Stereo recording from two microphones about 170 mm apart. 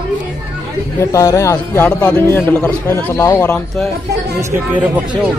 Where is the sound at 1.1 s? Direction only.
20° left (ahead or behind).